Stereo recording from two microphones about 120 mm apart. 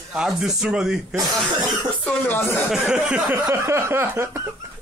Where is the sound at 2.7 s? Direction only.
5° right (ahead or behind).